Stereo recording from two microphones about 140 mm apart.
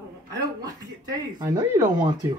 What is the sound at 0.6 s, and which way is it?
Speech, 25° right (ahead or behind).